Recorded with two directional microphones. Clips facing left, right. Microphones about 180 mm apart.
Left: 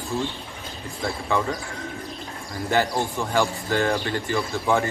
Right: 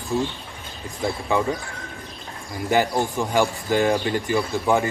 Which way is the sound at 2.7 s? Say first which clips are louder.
Right 2 dB; 15° right (ahead or behind).